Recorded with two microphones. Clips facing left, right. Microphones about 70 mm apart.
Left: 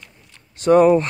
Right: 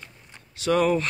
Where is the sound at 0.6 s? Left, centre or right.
Left.